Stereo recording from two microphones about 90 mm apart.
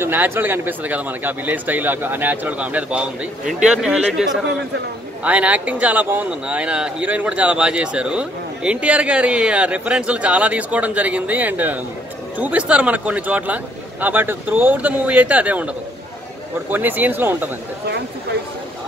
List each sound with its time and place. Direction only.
0.0 s speech: 25° right (ahead or behind)
16.7 s speech: 20° right (ahead or behind)